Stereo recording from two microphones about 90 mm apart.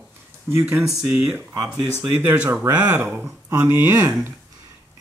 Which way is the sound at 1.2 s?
35° right (ahead or behind).